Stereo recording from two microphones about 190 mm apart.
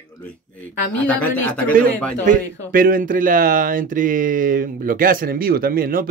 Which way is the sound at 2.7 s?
45° right (ahead or behind).